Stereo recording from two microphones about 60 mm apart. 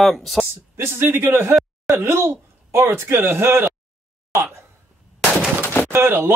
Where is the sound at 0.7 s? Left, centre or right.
Right.